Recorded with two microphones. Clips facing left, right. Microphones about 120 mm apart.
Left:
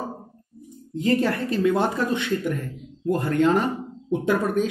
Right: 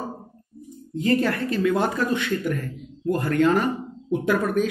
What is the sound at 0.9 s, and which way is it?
Speech, 25° left (ahead or behind).